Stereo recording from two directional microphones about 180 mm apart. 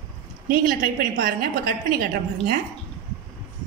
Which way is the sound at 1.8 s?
55° right (ahead or behind).